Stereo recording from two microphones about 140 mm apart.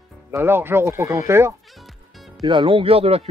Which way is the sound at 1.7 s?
Centre (ahead or behind).